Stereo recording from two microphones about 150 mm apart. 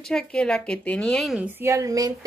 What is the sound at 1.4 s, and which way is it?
Speech, 15° right (ahead or behind).